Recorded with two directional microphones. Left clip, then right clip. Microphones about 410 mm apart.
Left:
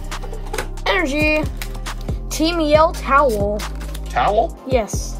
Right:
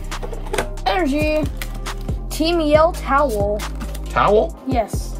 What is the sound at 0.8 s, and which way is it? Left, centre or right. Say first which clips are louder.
Music: left 1 dB; centre.